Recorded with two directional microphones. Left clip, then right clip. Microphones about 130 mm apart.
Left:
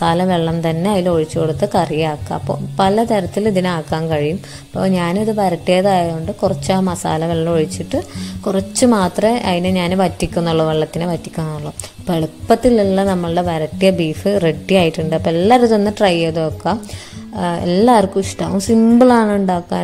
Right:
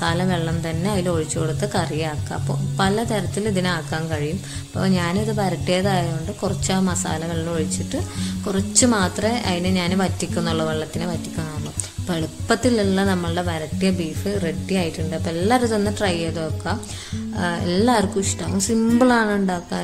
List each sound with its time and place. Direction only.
0.0 s speech: 45° left (ahead or behind)
1.0 s speech: 35° left (ahead or behind)
12.1 s a woman's voice: 40° left (ahead or behind)
13.7 s a woman's voice: 60° left (ahead or behind)
17.4 s speech: 40° left (ahead or behind)